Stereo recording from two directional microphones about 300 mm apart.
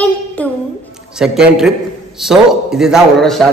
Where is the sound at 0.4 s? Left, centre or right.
Centre.